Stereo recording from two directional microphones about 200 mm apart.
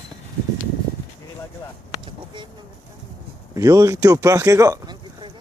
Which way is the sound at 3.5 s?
15° right (ahead or behind).